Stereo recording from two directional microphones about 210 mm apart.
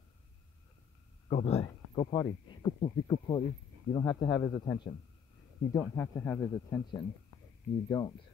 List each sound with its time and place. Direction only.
1.3 s speech: 30° left (ahead or behind)